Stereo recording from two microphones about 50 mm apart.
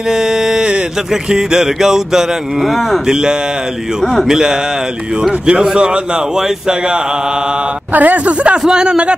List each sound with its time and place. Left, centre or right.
0.1 s music: centre
2.6 s speech: centre
3.1 s music: centre
4.0 s speech: centre
4.3 s music: centre
7.9 s speech: right
8.6 s music: centre